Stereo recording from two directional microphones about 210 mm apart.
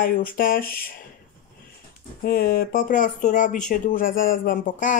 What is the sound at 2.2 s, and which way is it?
Speech, 45° left (ahead or behind).